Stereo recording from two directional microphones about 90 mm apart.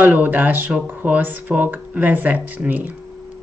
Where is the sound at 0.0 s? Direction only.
20° right (ahead or behind).